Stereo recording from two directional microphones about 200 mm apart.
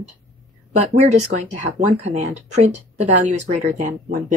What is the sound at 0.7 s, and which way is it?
Speech, 35° right (ahead or behind).